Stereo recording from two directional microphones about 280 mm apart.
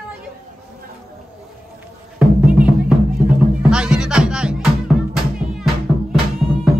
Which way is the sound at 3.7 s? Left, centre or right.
Centre.